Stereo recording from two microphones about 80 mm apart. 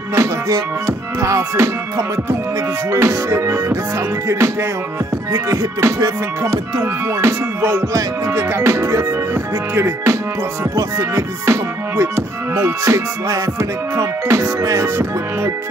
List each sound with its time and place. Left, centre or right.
0.1 s music: right